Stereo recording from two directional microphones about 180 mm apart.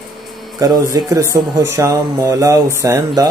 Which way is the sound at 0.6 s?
20° right (ahead or behind).